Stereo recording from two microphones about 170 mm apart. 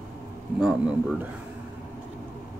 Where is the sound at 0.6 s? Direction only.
5° right (ahead or behind).